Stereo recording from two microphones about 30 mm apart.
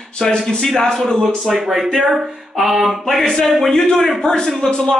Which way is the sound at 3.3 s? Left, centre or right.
Centre.